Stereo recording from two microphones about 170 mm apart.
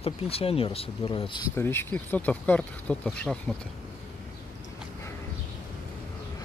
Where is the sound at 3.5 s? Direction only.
5° right (ahead or behind).